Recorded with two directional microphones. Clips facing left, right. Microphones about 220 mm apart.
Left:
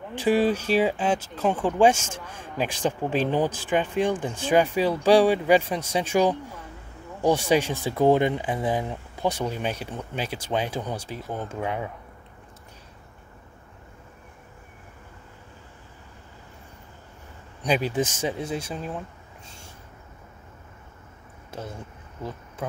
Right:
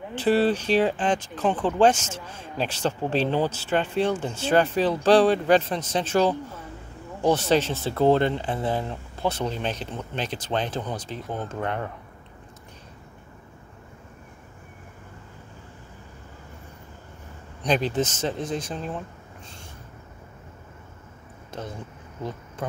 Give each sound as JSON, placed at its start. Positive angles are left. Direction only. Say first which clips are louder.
{"t": 0.1, "sound": "speech", "louder": "even", "side_deg": 10}
{"t": 17.6, "sound": "speech", "louder": "even", "side_deg": 10}
{"t": 21.5, "sound": "speech", "louder": "right 1 dB", "side_deg": 5}